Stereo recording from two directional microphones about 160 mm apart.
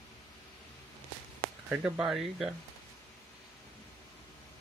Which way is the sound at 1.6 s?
5° right (ahead or behind).